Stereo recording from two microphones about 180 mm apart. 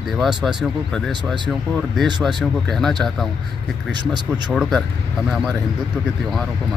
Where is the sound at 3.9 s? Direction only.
25° right (ahead or behind).